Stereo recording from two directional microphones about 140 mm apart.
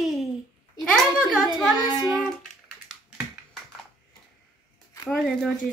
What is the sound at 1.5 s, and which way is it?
Speech, 30° left (ahead or behind).